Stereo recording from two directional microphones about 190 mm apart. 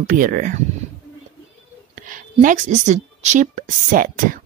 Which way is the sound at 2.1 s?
45° right (ahead or behind).